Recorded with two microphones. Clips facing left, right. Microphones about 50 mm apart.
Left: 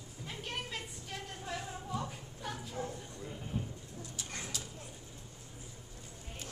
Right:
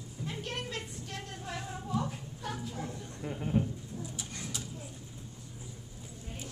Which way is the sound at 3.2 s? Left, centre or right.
Right.